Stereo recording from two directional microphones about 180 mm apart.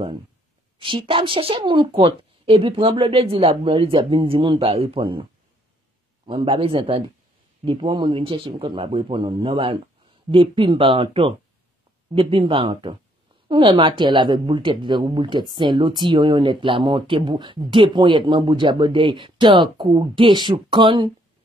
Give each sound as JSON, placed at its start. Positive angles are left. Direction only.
{"t": 0.7, "sound": "speech", "side_deg": -30}
{"t": 6.2, "sound": "speech", "side_deg": -30}